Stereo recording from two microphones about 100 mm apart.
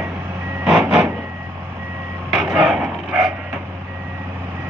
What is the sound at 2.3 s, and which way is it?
Dog, 5° right (ahead or behind).